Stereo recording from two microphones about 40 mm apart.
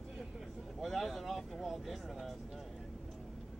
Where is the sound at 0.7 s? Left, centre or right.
Centre.